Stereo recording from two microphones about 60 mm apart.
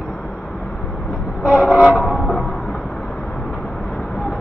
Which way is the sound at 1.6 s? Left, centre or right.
Centre.